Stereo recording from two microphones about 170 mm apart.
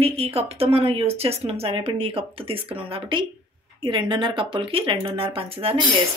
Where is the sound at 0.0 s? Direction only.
35° right (ahead or behind).